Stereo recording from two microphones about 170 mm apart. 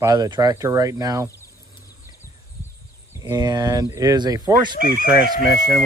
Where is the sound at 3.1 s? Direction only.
20° right (ahead or behind).